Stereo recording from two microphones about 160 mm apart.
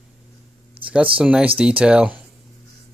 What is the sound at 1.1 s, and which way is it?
Speech, 10° right (ahead or behind).